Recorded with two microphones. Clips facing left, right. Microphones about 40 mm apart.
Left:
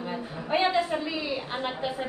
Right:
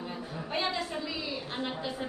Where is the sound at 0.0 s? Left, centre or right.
Left.